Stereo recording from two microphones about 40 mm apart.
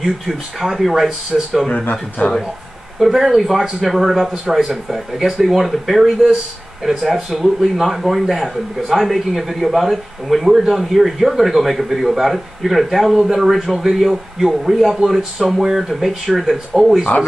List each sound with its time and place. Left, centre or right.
0.0 s a man's voice: centre
1.9 s a man's voice: left
3.0 s a man's voice: centre